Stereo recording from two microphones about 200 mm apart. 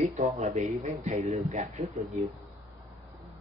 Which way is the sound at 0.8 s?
35° right (ahead or behind).